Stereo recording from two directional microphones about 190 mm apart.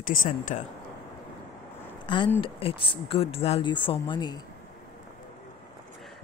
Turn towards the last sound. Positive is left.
turn(degrees=25)  # may be behind; listen again after turning